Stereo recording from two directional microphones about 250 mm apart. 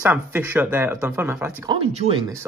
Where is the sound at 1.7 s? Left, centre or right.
Right.